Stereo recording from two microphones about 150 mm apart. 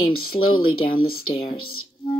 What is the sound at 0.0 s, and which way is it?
Speech, 35° left (ahead or behind).